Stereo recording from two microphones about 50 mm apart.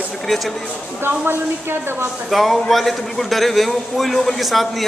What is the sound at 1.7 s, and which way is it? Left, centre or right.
Speech, right.